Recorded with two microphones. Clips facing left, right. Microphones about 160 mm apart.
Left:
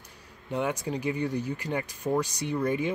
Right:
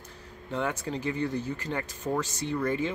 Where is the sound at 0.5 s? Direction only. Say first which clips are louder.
Left 2 dB; 15° left (ahead or behind).